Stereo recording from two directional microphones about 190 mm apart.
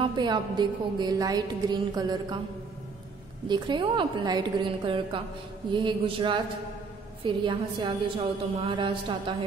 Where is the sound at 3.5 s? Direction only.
25° right (ahead or behind).